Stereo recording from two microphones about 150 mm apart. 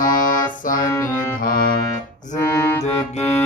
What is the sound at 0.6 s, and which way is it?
Music, 65° left (ahead or behind).